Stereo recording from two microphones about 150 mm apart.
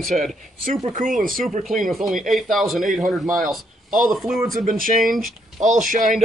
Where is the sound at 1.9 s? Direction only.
Centre (ahead or behind).